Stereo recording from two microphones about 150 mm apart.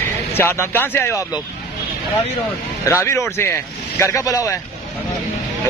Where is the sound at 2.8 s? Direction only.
20° left (ahead or behind).